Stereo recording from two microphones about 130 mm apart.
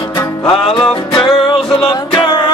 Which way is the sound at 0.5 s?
45° left (ahead or behind).